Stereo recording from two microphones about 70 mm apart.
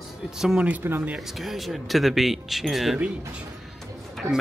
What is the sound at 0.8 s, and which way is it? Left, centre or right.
Speech, right.